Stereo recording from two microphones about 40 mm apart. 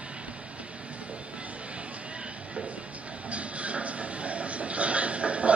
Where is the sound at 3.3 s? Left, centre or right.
Right.